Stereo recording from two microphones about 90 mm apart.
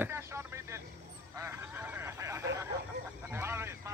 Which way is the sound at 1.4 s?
25° right (ahead or behind).